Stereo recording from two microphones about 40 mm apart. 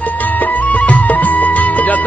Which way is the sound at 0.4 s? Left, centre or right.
Left.